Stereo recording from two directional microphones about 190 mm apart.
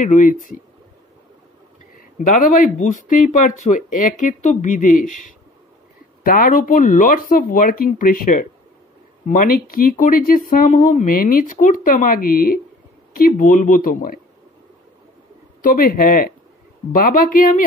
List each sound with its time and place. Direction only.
0.0 s speech: 45° left (ahead or behind)
2.0 s speech: 45° left (ahead or behind)
15.6 s speech: 45° left (ahead or behind)